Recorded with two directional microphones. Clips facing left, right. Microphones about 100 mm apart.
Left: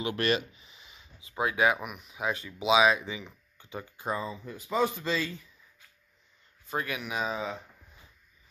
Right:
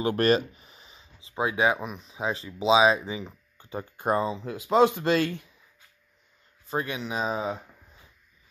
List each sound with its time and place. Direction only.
0.0 s a sound: 40° right (ahead or behind)
1.3 s speech: 25° right (ahead or behind); by 5.5 s 65° right (ahead or behind)
6.7 s speech: 25° right (ahead or behind)